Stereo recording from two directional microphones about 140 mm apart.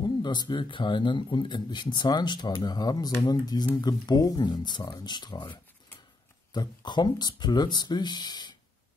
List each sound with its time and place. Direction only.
0.0 s speech: 30° left (ahead or behind)